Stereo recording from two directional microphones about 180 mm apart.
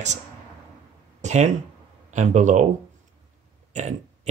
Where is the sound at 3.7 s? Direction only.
40° right (ahead or behind).